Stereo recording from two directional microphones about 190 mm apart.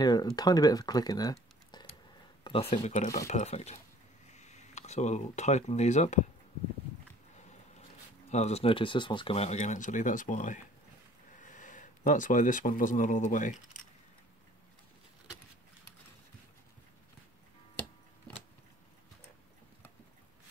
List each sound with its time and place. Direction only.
0.0 s speech: 20° left (ahead or behind); by 6.2 s 40° left (ahead or behind)
8.3 s speech: 35° left (ahead or behind)